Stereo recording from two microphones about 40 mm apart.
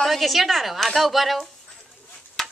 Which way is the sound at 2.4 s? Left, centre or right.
Centre.